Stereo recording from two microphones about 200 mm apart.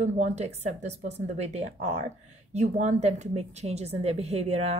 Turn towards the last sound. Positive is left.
turn(degrees=-35)  # may be behind; listen again after turning